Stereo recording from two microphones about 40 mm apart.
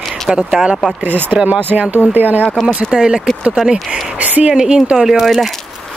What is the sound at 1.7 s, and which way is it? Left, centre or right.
Speech, centre.